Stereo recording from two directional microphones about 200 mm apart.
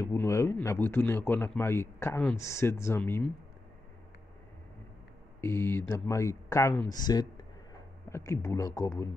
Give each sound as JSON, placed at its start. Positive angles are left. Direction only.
{"t": 0.0, "sound": "speech", "side_deg": 15}
{"t": 5.4, "sound": "speech", "side_deg": 10}